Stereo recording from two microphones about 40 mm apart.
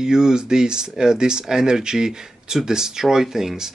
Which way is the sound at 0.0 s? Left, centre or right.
Centre.